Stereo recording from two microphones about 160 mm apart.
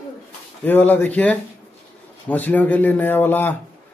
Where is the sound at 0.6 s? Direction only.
10° left (ahead or behind).